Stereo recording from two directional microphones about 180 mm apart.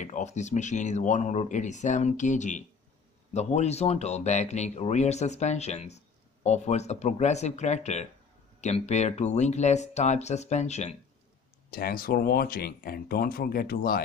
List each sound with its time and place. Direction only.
0.0 s speech: 40° left (ahead or behind)
11.7 s speech: 55° left (ahead or behind)